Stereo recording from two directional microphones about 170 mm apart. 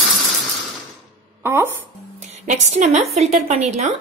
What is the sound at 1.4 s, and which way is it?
Speech, 15° right (ahead or behind).